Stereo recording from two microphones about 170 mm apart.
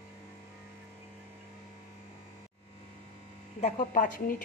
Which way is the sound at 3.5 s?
45° left (ahead or behind).